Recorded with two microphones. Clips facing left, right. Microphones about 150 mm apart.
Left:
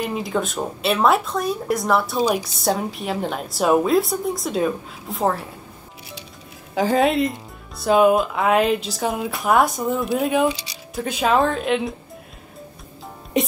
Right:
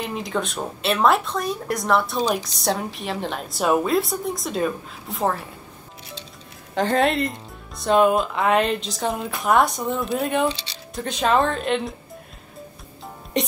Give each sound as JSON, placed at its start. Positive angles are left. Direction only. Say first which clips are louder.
{"t": 0.0, "sound": "a woman's voice", "louder": "left 3 dB", "side_deg": 5}
{"t": 6.7, "sound": "a woman's voice", "louder": "left 2 dB", "side_deg": 5}